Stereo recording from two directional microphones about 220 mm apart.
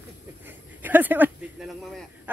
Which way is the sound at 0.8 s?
10° right (ahead or behind).